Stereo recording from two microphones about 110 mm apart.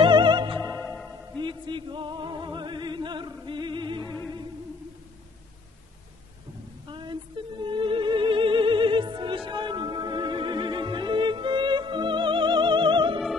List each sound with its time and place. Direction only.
0.0 s opera: 45° right (ahead or behind)
0.7 s music: 15° left (ahead or behind)
1.3 s music: 45° right (ahead or behind)
6.9 s music: 45° right (ahead or behind)